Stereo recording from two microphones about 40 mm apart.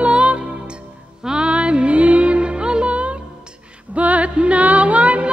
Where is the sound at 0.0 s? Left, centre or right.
Right.